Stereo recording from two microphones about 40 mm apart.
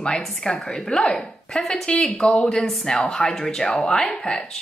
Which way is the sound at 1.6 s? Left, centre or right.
Centre.